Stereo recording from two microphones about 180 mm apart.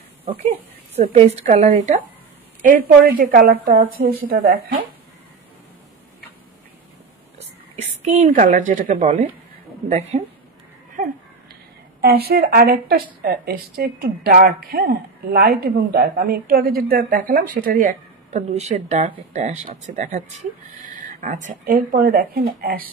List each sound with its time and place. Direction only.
0.2 s speech: 35° right (ahead or behind)
2.6 s a woman's voice: 50° right (ahead or behind)
7.3 s a sound: 40° right (ahead or behind)
9.8 s speech: 35° right (ahead or behind)
12.0 s a woman's voice: 60° right (ahead or behind)